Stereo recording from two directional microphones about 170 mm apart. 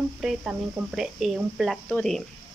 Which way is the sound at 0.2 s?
5° right (ahead or behind).